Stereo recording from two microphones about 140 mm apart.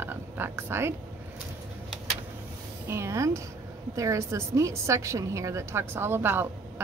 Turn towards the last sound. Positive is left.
turn(degrees=-15)  # may be behind; listen again after turning